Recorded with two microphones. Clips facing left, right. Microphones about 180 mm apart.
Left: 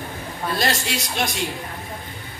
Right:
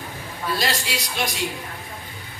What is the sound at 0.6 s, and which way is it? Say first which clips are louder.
Speech: left 2 dB; 50° left (ahead or behind).